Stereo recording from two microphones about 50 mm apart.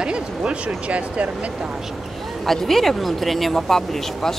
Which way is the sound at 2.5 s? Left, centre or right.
Centre.